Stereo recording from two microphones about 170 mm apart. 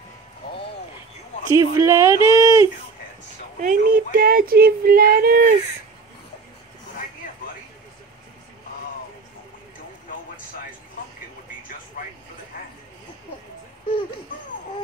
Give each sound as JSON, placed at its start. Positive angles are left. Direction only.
{"t": 1.5, "sound": "speech", "side_deg": -20}
{"t": 3.6, "sound": "speech", "side_deg": -55}
{"t": 12.0, "sound": "vehicle", "side_deg": 55}